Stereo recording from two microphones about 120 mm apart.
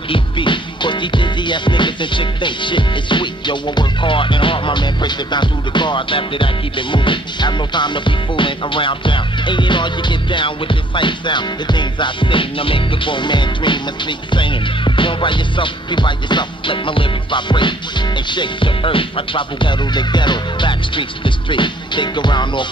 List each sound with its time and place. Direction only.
0.1 s music: 45° left (ahead or behind)